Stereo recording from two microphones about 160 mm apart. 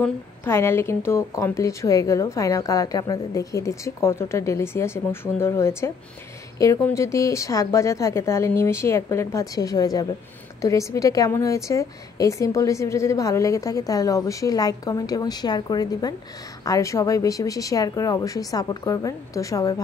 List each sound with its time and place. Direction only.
0.0 s a woman's voice: 15° left (ahead or behind)